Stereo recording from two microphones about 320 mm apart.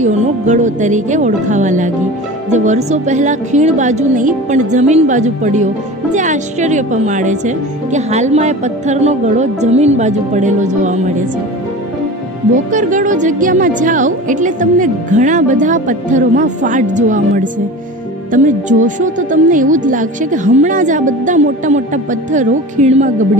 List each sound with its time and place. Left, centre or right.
0.0 s a woman's voice: right
12.7 s a woman's voice: right